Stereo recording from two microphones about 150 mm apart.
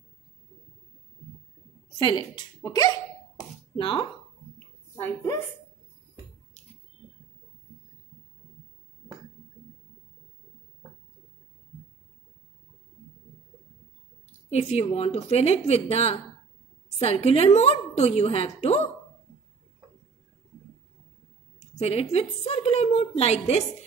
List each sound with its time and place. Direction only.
2.0 s speech: 30° left (ahead or behind)
3.7 s speech: 35° left (ahead or behind)
5.0 s speech: 20° left (ahead or behind)
14.5 s a woman's voice: 45° left (ahead or behind)
21.5 s a woman's voice: 45° left (ahead or behind)